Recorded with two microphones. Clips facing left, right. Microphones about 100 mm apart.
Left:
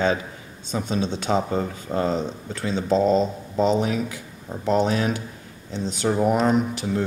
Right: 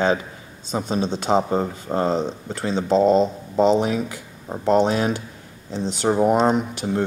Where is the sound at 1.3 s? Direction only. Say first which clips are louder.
Right 4 dB; 30° right (ahead or behind).